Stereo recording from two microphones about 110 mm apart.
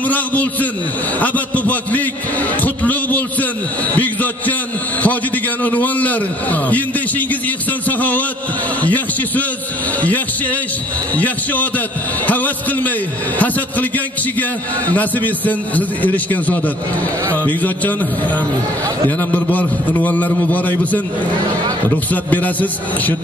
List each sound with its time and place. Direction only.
0.0 s a man's voice: 15° left (ahead or behind)
22.1 s a man's voice: 15° left (ahead or behind)